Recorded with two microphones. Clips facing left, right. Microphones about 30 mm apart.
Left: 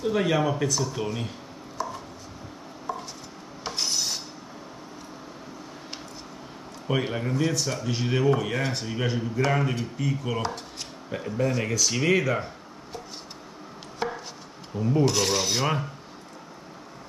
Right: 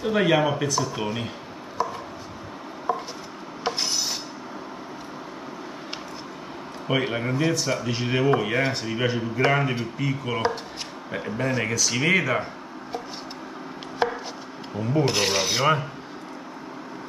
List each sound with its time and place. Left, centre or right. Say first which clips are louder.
0.0 s speech: right 3 dB; right
0.6 s speech: right 2 dB; centre
1.8 s chopping: right 5 dB; right
2.9 s a sound: right 7 dB; right
3.6 s rub: right 2 dB; centre
6.9 s speech: right 2 dB; right
14.0 s chopping: right 6 dB; right
15.0 s speech: right 2 dB; right